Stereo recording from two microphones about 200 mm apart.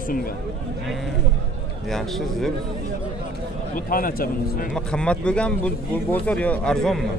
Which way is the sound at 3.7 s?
45° left (ahead or behind).